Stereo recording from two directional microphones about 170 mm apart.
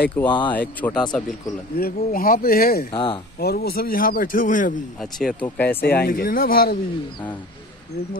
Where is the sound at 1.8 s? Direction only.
65° left (ahead or behind).